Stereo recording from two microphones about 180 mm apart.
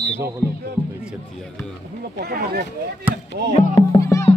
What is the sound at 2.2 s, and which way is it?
Speech, 60° right (ahead or behind).